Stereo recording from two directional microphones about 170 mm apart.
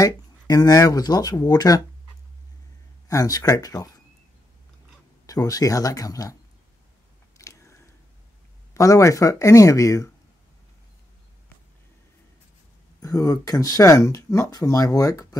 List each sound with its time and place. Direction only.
0.0 s speech: 20° left (ahead or behind)
3.1 s speech: 20° left (ahead or behind)
5.2 s speech: 20° left (ahead or behind)
7.3 s camera: 20° left (ahead or behind)
8.7 s speech: 20° left (ahead or behind)
13.0 s speech: 20° left (ahead or behind)